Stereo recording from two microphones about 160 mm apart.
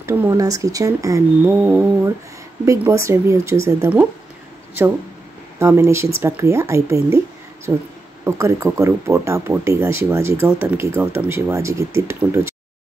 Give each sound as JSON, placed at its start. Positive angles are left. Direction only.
{"t": 0.0, "sound": "speech", "side_deg": -20}
{"t": 5.6, "sound": "speech", "side_deg": -15}